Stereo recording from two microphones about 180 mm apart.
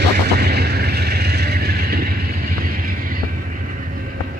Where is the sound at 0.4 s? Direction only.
60° right (ahead or behind).